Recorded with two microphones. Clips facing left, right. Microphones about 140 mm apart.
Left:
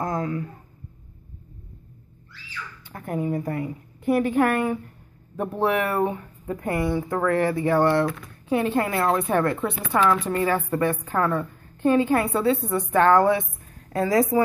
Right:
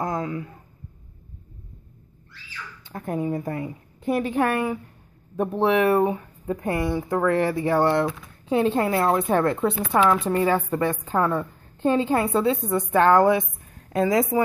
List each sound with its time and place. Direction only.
0.0 s a sound: 20° right (ahead or behind)
2.9 s a woman's voice: 25° right (ahead or behind)
8.5 s a woman's voice: 25° right (ahead or behind)